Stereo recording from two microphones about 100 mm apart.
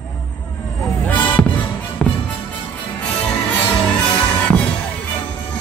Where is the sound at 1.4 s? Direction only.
5° left (ahead or behind).